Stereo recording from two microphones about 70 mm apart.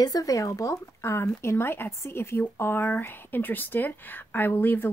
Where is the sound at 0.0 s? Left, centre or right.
Left.